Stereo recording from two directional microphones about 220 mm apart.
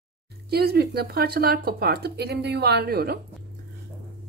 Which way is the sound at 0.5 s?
45° right (ahead or behind).